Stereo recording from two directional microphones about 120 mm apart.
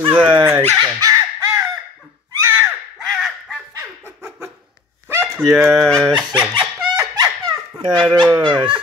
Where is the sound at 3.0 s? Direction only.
Centre (ahead or behind).